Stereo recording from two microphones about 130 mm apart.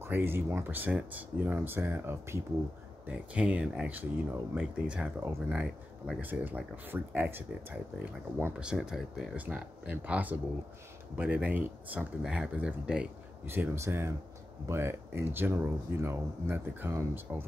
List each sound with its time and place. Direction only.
0.0 s speech: 15° right (ahead or behind)
8.6 s speech: 5° right (ahead or behind)
13.5 s speech: 20° right (ahead or behind)